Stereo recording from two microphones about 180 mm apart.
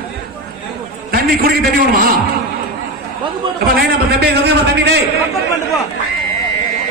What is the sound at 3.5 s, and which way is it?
A man's voice, 60° right (ahead or behind).